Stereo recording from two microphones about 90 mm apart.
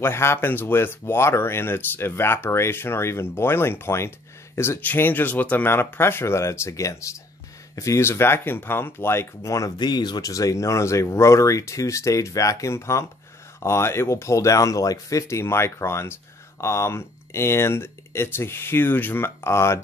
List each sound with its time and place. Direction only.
0.0 s speech: 30° left (ahead or behind)
9.8 s speech: 50° left (ahead or behind); by 19.8 s 30° left (ahead or behind)